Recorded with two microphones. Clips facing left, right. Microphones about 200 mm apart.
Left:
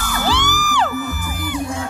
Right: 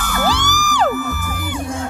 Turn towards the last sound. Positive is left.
turn(degrees=-45)  # may be behind; listen again after turning